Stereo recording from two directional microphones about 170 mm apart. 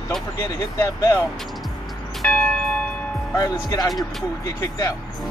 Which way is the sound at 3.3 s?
20° left (ahead or behind).